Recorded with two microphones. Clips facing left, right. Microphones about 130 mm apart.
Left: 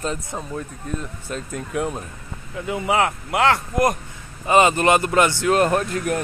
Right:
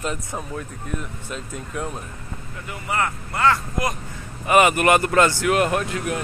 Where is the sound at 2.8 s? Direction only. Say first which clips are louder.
Left 4 dB; 85° left.